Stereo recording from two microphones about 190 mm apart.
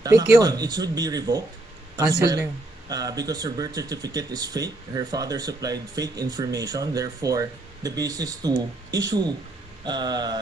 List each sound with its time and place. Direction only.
0.0 s speech: 20° right (ahead or behind)